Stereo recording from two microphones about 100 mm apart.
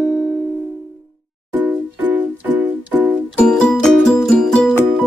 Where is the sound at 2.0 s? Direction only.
15° right (ahead or behind).